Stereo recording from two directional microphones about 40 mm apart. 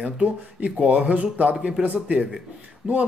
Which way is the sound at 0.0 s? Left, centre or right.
Right.